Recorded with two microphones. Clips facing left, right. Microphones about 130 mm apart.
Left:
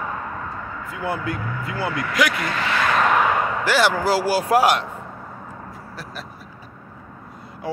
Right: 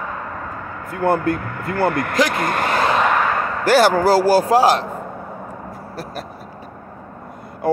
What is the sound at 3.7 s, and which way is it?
Speech, 45° right (ahead or behind).